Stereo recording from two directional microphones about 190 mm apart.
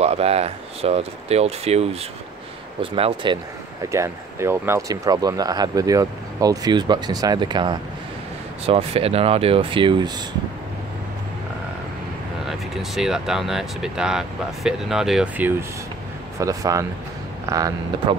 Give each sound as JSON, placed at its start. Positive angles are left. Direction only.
{"t": 0.0, "sound": "speech", "side_deg": -30}
{"t": 3.9, "sound": "speech", "side_deg": -15}
{"t": 12.4, "sound": "speech", "side_deg": 0}
{"t": 16.3, "sound": "speech", "side_deg": -15}